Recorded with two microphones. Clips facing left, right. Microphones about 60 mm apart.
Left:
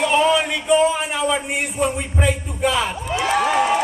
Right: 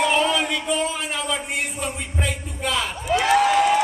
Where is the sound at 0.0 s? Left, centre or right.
Centre.